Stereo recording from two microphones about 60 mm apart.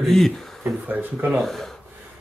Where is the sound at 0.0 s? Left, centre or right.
Centre.